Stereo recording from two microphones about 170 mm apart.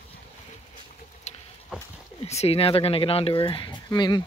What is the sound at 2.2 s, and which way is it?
Speech, 35° left (ahead or behind).